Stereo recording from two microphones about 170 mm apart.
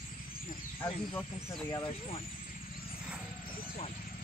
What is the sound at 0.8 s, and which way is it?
Speech, 15° left (ahead or behind).